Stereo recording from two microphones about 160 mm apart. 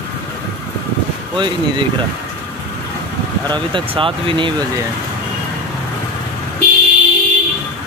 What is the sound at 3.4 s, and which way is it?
Speech, 30° right (ahead or behind).